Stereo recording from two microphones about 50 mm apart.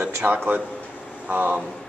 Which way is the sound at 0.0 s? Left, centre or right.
Right.